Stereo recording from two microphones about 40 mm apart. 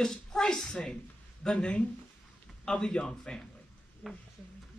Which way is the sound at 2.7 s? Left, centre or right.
Centre.